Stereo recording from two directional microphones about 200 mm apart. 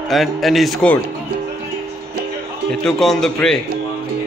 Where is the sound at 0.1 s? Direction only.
Centre (ahead or behind).